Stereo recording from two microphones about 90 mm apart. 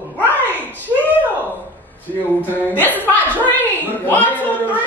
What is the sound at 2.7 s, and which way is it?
A man's voice, 20° left (ahead or behind).